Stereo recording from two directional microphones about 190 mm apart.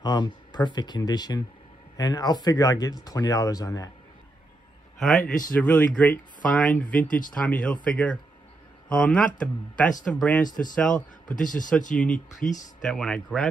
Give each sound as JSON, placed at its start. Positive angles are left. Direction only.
{"t": 0.0, "sound": "speech", "side_deg": 20}
{"t": 5.0, "sound": "speech", "side_deg": 5}
{"t": 10.4, "sound": "speech", "side_deg": 45}
{"t": 10.8, "sound": "speech", "side_deg": 5}
{"t": 11.3, "sound": "speech", "side_deg": 45}
{"t": 11.9, "sound": "speech", "side_deg": 5}